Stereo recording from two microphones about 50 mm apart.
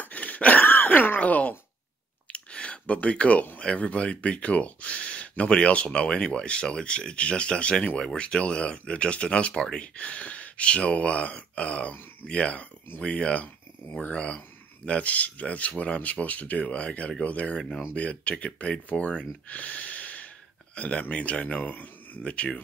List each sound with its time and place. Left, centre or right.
0.0 s groan: left
2.3 s clicking: left
3.6 s speech: left